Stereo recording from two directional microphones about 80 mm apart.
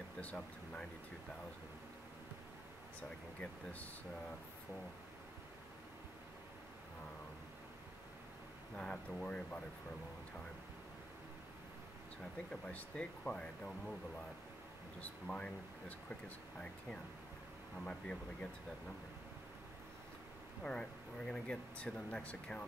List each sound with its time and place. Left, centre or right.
0.2 s speech: centre
8.7 s speech: centre
12.2 s speech: centre
15.0 s speech: centre
20.7 s speech: centre